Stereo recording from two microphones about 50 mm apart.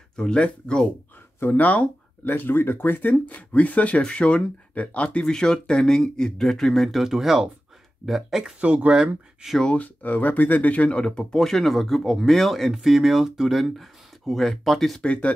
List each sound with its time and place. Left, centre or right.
0.1 s speech: centre
1.6 s speech: left
3.1 s speech: left
5.2 s speech: centre
7.0 s speech: centre
8.5 s speech: right
9.4 s speech: centre
9.8 s speech: left
11.1 s speech: centre
15.0 s speech: left